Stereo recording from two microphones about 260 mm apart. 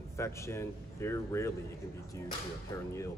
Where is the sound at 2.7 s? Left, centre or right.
Centre.